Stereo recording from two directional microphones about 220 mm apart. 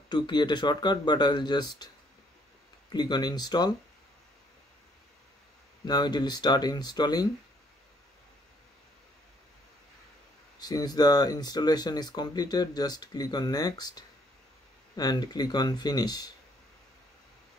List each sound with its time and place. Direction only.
0.1 s speech: 20° left (ahead or behind)
2.9 s speech: 20° left (ahead or behind)
5.9 s speech: 20° left (ahead or behind)
10.6 s speech: 20° left (ahead or behind)